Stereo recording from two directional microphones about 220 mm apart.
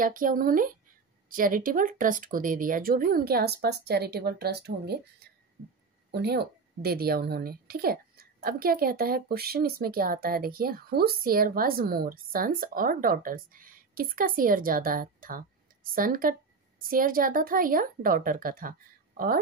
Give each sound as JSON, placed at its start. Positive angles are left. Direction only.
{"t": 0.0, "sound": "a woman's voice", "side_deg": -40}